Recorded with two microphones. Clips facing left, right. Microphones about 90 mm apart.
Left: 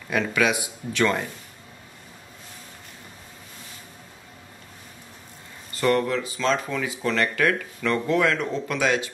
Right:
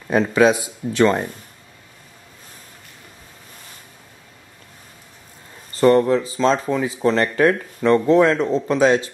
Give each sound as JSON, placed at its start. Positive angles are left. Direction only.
{"t": 0.1, "sound": "speech", "side_deg": -30}
{"t": 5.7, "sound": "speech", "side_deg": -30}